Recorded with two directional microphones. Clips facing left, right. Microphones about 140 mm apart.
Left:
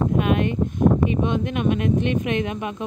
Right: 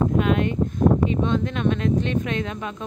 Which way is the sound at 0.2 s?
15° left (ahead or behind).